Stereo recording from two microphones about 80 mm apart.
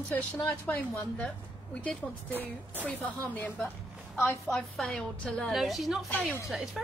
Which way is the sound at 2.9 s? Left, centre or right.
Centre.